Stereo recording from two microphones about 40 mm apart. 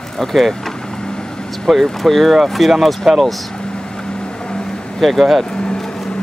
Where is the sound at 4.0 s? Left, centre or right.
Centre.